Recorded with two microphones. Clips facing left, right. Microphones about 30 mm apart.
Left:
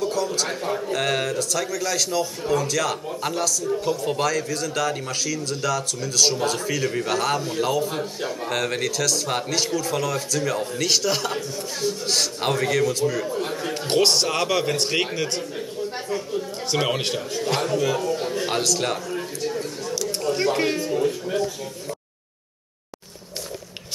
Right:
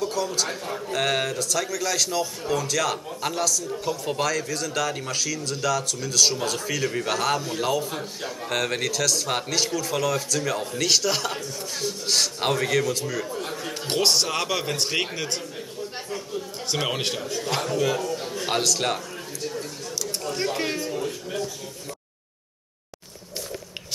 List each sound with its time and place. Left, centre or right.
0.0 s a man's voice: centre
18.0 s a man's voice: centre
18.4 s a man's voice: centre
19.1 s a sound: centre